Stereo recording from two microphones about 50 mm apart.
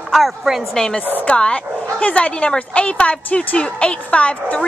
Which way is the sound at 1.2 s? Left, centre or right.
Left.